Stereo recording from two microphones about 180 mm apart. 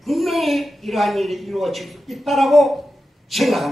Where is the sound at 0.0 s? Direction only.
Centre (ahead or behind).